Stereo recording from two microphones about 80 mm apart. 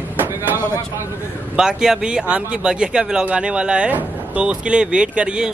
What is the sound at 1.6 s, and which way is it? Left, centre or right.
Speech, centre.